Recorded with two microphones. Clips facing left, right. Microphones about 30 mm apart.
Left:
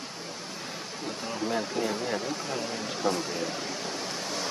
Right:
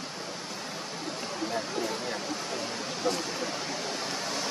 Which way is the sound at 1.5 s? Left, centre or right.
Centre.